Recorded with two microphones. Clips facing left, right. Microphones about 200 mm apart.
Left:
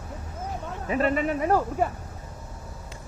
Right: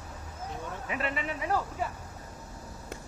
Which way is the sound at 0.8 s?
40° left (ahead or behind).